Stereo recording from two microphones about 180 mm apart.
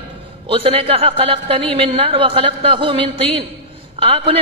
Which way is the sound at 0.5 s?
30° right (ahead or behind).